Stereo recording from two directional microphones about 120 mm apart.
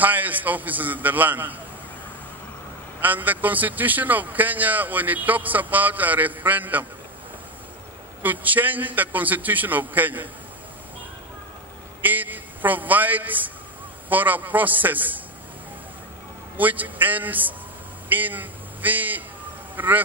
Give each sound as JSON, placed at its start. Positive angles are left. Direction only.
{"t": 0.0, "sound": "a man's voice", "side_deg": -15}
{"t": 3.0, "sound": "a man's voice", "side_deg": -15}
{"t": 8.2, "sound": "a man's voice", "side_deg": -15}
{"t": 12.0, "sound": "a man's voice", "side_deg": -15}
{"t": 16.5, "sound": "a man's voice", "side_deg": -15}